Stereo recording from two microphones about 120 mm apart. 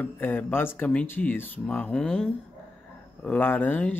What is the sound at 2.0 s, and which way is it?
Speech, 5° left (ahead or behind).